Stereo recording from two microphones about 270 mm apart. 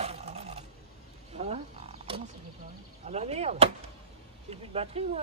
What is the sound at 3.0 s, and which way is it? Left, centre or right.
Door, right.